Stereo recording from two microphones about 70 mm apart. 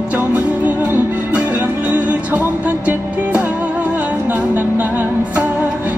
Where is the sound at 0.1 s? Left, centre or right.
Right.